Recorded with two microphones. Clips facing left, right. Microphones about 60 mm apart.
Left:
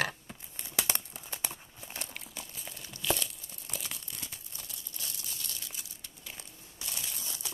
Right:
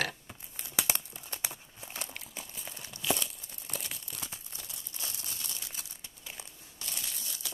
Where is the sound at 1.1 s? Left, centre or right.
Centre.